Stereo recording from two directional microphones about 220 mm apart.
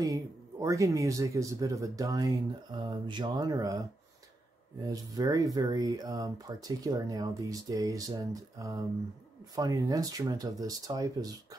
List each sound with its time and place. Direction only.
0.0 s speech: 15° right (ahead or behind)
4.8 s speech: 15° right (ahead or behind)